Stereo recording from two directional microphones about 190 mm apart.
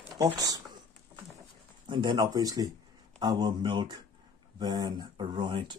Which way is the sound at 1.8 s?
25° right (ahead or behind).